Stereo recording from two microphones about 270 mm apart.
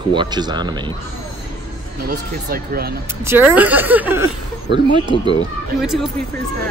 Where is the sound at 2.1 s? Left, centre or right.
Right.